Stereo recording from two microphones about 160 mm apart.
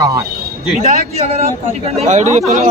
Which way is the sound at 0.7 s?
45° right (ahead or behind).